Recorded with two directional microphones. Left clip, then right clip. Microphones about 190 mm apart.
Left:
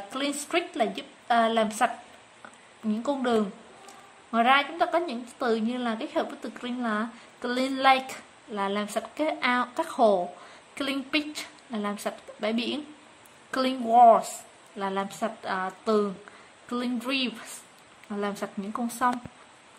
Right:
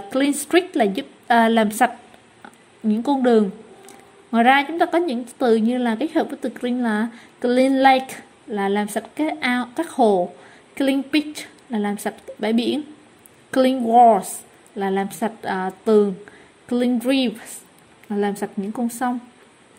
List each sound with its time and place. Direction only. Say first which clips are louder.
0.1 s a woman's voice: right 10 dB; 20° right (ahead or behind)
3.0 s a woman's voice: right 9 dB; 15° right (ahead or behind)